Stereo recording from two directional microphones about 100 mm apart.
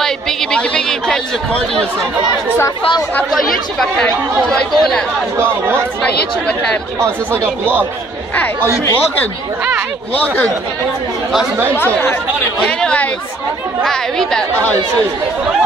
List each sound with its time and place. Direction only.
0.0 s a sound: 5° left (ahead or behind)
3.8 s speech: 5° left (ahead or behind)
5.4 s speech: 20° right (ahead or behind)
7.0 s speech: 20° right (ahead or behind)
10.1 s speech: 20° left (ahead or behind)
11.7 s speech: 20° left (ahead or behind)